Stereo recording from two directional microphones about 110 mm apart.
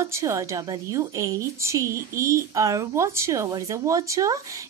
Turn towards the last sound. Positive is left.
turn(degrees=-30)  # may be behind; listen again after turning